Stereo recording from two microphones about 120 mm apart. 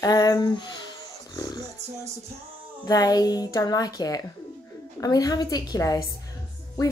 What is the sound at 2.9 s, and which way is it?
A woman's voice, 30° left (ahead or behind).